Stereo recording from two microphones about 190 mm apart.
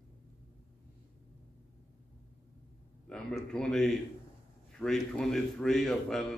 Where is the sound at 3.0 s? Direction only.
5° left (ahead or behind).